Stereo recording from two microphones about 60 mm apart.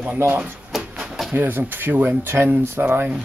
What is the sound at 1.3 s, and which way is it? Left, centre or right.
Speech, right.